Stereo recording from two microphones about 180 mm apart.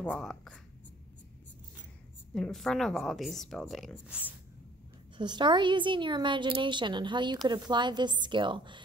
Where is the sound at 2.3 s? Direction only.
Centre (ahead or behind).